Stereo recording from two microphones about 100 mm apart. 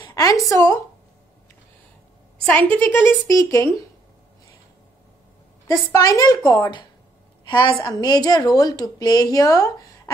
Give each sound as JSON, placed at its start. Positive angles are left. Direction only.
{"t": 0.1, "sound": "a woman's voice", "side_deg": 35}
{"t": 2.4, "sound": "a woman's voice", "side_deg": 10}
{"t": 2.8, "sound": "a woman's voice", "side_deg": 20}
{"t": 5.9, "sound": "a woman's voice", "side_deg": 35}
{"t": 7.4, "sound": "a woman's voice", "side_deg": 50}